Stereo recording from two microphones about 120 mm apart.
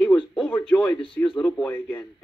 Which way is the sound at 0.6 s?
10° left (ahead or behind).